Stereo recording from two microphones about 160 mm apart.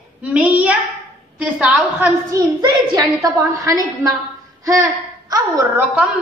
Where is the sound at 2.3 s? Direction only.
20° right (ahead or behind).